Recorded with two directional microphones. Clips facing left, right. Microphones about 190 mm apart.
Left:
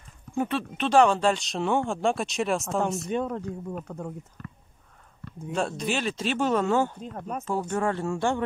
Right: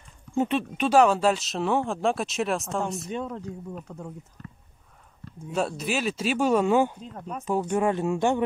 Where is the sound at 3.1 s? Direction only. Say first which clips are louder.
Left 4 dB; 60° left (ahead or behind).